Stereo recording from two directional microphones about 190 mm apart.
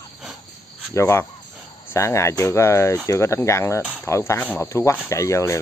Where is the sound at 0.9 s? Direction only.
15° left (ahead or behind).